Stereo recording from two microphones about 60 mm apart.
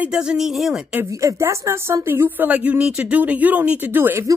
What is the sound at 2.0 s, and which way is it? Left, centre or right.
Speech, right.